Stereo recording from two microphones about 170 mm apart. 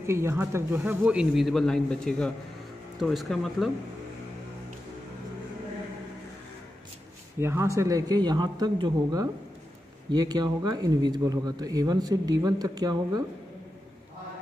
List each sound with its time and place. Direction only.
0.0 s a man's voice: 15° right (ahead or behind); by 3.7 s centre (ahead or behind)
7.3 s speech: 15° right (ahead or behind)